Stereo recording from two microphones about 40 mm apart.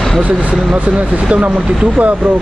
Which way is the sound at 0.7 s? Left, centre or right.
Right.